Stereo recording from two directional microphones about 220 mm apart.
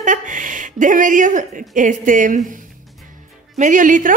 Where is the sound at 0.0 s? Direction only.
35° right (ahead or behind).